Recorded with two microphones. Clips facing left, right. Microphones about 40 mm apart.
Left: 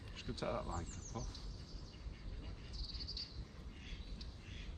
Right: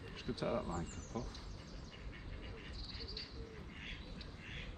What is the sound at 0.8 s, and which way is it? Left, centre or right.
Speech, right.